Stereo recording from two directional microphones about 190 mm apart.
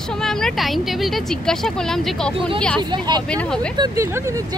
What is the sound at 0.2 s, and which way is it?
Speech, 5° left (ahead or behind).